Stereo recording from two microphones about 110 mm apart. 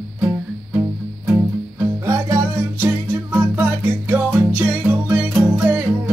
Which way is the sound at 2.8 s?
20° right (ahead or behind).